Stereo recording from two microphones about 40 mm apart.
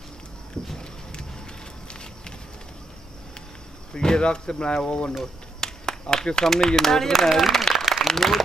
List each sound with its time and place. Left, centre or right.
0.6 s speech: centre
1.9 s walk: left
3.9 s speech: left
5.2 s speech: centre
7.2 s applause: centre
8.1 s speech: centre